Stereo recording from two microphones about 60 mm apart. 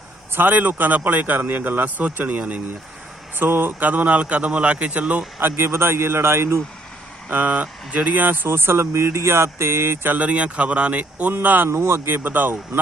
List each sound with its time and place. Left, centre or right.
0.3 s a man's voice: right
5.4 s a man's voice: right
7.2 s speech: right
10.1 s a man's voice: right
11.7 s speech: right